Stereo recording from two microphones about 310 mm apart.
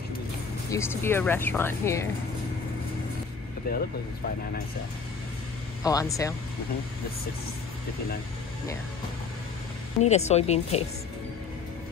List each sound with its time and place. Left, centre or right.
0.7 s speech: centre
3.7 s a woman's voice: left
5.9 s speech: centre
10.0 s a woman's voice: left